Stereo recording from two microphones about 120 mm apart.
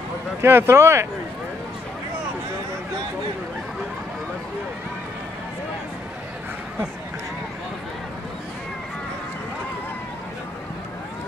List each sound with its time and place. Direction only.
0.4 s speech: 20° right (ahead or behind)